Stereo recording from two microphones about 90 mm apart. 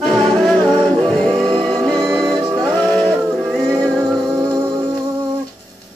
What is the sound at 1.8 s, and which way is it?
Music, 45° right (ahead or behind).